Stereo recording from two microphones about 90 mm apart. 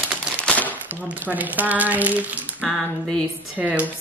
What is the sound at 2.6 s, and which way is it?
A woman's voice, centre (ahead or behind).